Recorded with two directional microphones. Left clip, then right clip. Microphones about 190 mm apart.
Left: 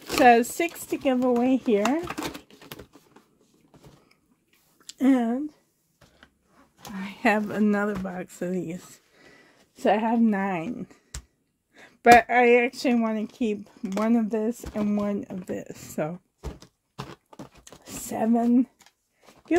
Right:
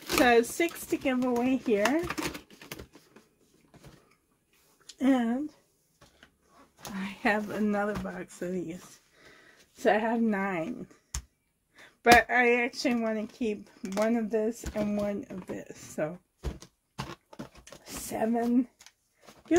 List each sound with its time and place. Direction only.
0.2 s speech: 50° left (ahead or behind)
2.0 s a sound: 5° left (ahead or behind)
4.8 s speech: 60° left (ahead or behind)
7.0 s speech: 60° left (ahead or behind)
9.8 s speech: 40° left (ahead or behind); by 16.1 s 60° left (ahead or behind)
17.1 s a sound: 10° left (ahead or behind)
17.8 s speech: 45° left (ahead or behind)